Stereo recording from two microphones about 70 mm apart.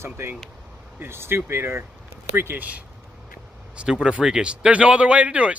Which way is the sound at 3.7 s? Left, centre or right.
Centre.